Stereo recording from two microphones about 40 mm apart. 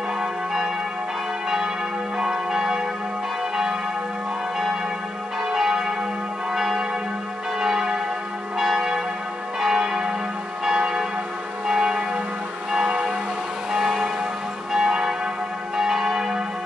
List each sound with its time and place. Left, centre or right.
2.1 s change ringing: centre
5.5 s change ringing: centre
7.6 s church bell: centre
12.7 s change ringing: right
14.7 s church bell: centre